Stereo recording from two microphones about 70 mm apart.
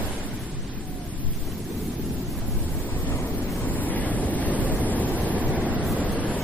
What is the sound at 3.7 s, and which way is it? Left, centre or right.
Waves, left.